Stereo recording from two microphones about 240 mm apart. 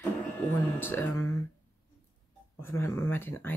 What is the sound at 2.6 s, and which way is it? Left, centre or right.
Speech, centre.